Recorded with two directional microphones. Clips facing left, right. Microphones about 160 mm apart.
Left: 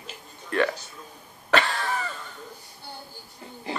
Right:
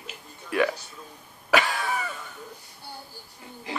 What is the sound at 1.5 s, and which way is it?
Cough, 5° right (ahead or behind).